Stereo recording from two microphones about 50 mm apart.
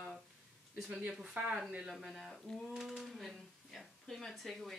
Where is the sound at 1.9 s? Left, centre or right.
Centre.